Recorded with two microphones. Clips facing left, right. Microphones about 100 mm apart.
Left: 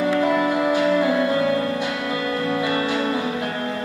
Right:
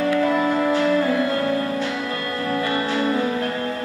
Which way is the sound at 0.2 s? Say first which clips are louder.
Even; 10° left (ahead or behind).